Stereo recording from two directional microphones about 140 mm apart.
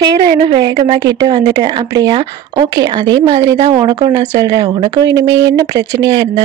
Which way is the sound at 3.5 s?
40° right (ahead or behind).